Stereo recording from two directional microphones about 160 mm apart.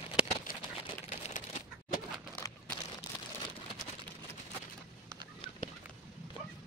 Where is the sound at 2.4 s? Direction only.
20° left (ahead or behind).